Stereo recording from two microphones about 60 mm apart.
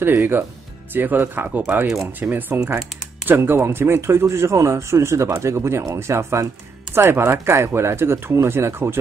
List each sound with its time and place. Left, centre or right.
0.2 s speech: right